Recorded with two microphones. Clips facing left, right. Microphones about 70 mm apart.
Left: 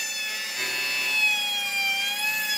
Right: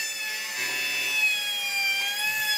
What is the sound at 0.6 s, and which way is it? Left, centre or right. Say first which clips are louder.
Music: left 1 dB; centre.